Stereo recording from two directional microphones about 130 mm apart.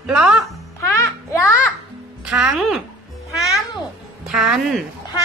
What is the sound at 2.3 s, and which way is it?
Speech, 5° right (ahead or behind).